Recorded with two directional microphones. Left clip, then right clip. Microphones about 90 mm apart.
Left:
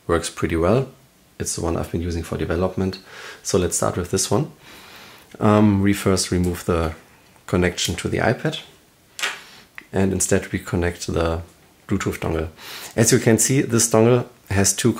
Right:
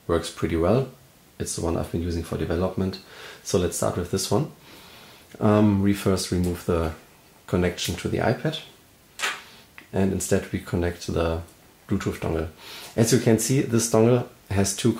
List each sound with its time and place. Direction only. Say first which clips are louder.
0.0 s speech: left 3 dB; 35° left (ahead or behind)
9.8 s speech: left 4 dB; 35° left (ahead or behind)